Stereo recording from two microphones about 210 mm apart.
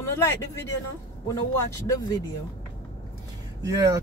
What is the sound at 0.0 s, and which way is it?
Speech, 10° left (ahead or behind).